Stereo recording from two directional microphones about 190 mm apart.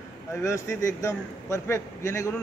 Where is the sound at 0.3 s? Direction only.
15° left (ahead or behind).